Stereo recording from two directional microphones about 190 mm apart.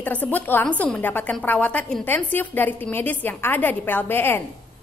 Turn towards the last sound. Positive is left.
turn(degrees=10)  # may be behind; listen again after turning